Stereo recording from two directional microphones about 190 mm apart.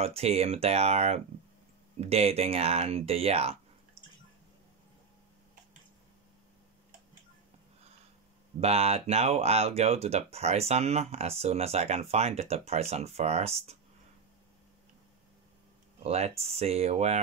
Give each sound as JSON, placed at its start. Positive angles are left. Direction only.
{"t": 0.0, "sound": "speech", "side_deg": -30}
{"t": 4.0, "sound": "a sound", "side_deg": -35}
{"t": 8.5, "sound": "speech", "side_deg": -35}
{"t": 16.0, "sound": "speech", "side_deg": -35}